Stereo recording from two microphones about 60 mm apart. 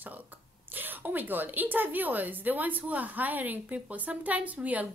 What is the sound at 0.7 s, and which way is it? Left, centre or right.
A woman's voice, right.